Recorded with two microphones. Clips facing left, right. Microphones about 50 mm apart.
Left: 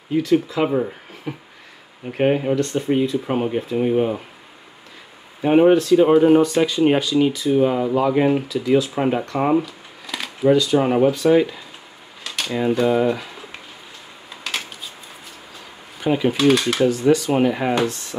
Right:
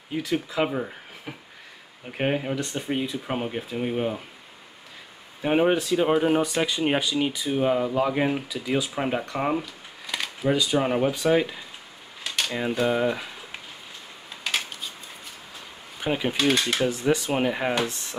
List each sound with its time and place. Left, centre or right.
0.1 s speech: centre
5.4 s speech: centre
5.7 s speech: centre
8.9 s speech: centre
10.0 s a sound: centre
10.5 s speech: centre
10.8 s speech: centre
12.2 s a sound: centre
12.5 s speech: centre
14.4 s a sound: centre
16.0 s speech: centre